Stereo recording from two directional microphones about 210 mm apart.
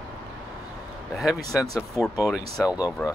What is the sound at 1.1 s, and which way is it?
Speech, centre (ahead or behind).